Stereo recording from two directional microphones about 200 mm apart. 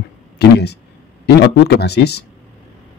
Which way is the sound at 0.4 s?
55° left (ahead or behind).